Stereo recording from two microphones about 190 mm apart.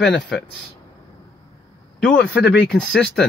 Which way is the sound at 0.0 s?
Centre (ahead or behind).